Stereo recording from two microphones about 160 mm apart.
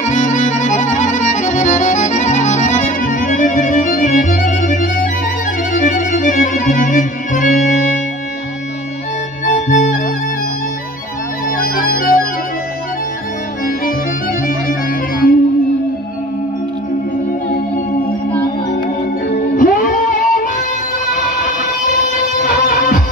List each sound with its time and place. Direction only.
0.0 s music: 50° left (ahead or behind)
9.5 s music: 55° left (ahead or behind)
11.5 s music: 60° left (ahead or behind)
14.7 s music: 65° left (ahead or behind)
19.5 s music: 55° left (ahead or behind)
22.4 s music: 60° left (ahead or behind)